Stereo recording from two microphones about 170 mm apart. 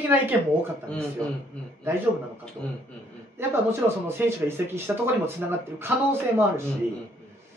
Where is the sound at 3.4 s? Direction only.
15° right (ahead or behind).